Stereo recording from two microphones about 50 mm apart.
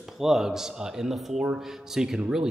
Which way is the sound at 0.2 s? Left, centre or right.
Centre.